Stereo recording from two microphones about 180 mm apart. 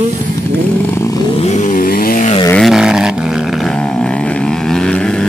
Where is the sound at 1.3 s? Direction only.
40° left (ahead or behind); by 2.2 s 55° left (ahead or behind).